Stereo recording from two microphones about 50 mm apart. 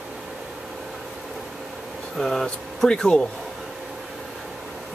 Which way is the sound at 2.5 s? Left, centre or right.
Centre.